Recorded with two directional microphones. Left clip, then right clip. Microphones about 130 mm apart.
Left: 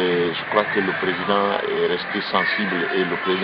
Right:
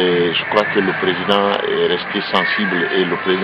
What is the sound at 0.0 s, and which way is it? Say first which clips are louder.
A man's voice: right 5 dB; centre (ahead or behind).